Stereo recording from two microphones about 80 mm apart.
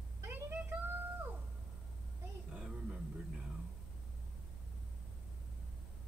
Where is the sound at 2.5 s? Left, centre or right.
Centre.